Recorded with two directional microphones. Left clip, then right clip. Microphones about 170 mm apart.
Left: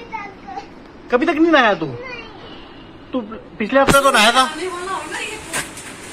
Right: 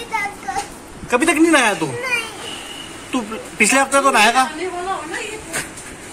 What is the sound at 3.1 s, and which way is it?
Speech, 15° right (ahead or behind).